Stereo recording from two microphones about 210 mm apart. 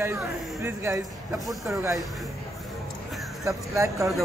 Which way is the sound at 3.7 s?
15° right (ahead or behind).